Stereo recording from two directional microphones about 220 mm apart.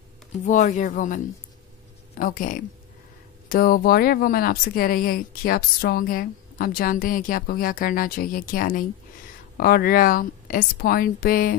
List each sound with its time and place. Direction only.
0.5 s speech: 35° left (ahead or behind)